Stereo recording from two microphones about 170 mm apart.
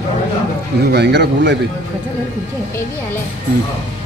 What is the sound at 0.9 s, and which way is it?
Speech, 80° right.